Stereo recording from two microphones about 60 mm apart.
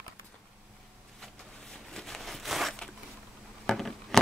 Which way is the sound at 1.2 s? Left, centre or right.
Centre.